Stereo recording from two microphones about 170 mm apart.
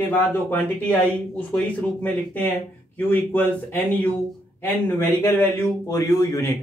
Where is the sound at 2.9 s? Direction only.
10° left (ahead or behind).